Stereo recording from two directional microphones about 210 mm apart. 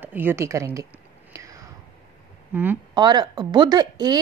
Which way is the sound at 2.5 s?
10° right (ahead or behind).